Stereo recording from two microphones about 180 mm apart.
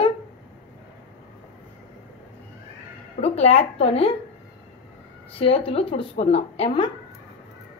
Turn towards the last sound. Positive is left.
turn(degrees=30)  # may be behind; listen again after turning